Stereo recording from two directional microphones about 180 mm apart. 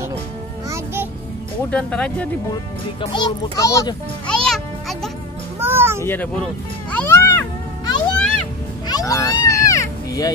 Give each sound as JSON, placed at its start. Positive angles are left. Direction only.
{"t": 1.7, "sound": "speech", "side_deg": 5}
{"t": 3.0, "sound": "a child's voice", "side_deg": 25}
{"t": 4.5, "sound": "music", "side_deg": 0}
{"t": 5.6, "sound": "a sound", "side_deg": -15}
{"t": 6.0, "sound": "music", "side_deg": 10}
{"t": 8.8, "sound": "children playing", "side_deg": 20}